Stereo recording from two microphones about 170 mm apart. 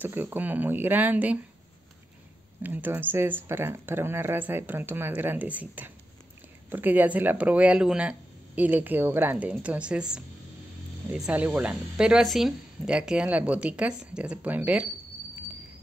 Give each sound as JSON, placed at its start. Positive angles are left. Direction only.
{"t": 0.0, "sound": "speech", "side_deg": -10}
{"t": 2.6, "sound": "speech", "side_deg": -10}